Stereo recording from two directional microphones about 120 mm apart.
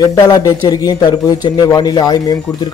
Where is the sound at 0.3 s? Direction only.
35° left (ahead or behind).